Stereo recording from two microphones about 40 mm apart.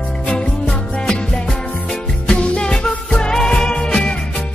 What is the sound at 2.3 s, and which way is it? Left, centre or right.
Music, left.